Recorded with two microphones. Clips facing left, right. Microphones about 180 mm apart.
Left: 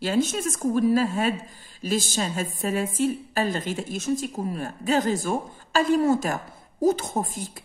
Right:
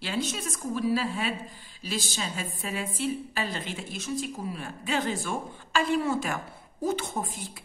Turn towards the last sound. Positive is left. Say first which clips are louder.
# left 5 dB
turn(degrees=45)  # may be behind; listen again after turning